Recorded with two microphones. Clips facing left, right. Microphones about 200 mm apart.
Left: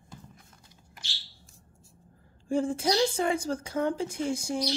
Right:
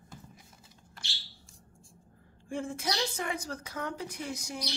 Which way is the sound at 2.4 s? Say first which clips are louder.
Left 8 dB; 30° left (ahead or behind).